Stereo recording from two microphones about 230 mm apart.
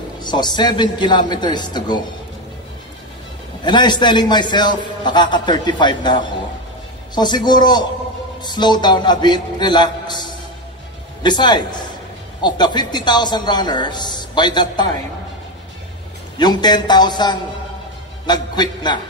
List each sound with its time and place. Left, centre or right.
0.2 s a man's voice: centre
3.6 s a man's voice: centre
11.2 s a man's voice: centre
16.3 s a man's voice: centre